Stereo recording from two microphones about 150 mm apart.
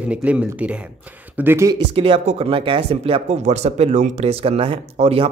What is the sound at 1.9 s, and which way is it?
Speech, 40° right (ahead or behind).